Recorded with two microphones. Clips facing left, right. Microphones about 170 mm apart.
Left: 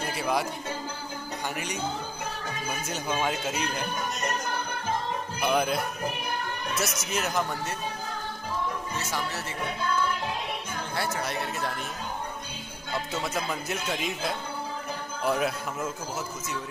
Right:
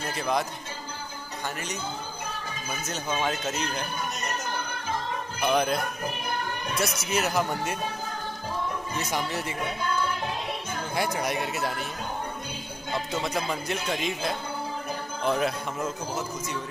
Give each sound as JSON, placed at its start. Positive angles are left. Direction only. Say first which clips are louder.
{"t": 0.1, "sound": "a man's voice", "louder": "right 1 dB", "side_deg": 10}
{"t": 2.9, "sound": "a man's voice", "louder": "right 1 dB", "side_deg": 10}
{"t": 5.4, "sound": "speech", "louder": "right 1 dB", "side_deg": 5}
{"t": 8.9, "sound": "speech", "louder": "right 3 dB", "side_deg": -15}
{"t": 11.0, "sound": "speech", "louder": "right 3 dB", "side_deg": -15}
{"t": 13.2, "sound": "a man's voice", "louder": "right 2 dB", "side_deg": 5}